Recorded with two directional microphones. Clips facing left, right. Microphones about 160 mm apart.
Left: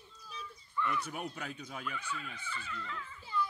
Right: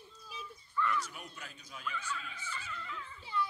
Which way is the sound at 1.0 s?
55° left (ahead or behind).